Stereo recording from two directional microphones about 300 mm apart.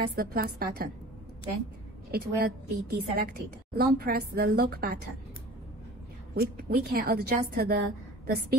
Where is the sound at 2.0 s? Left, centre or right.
Right.